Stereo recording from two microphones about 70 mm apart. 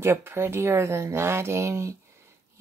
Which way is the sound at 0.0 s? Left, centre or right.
Right.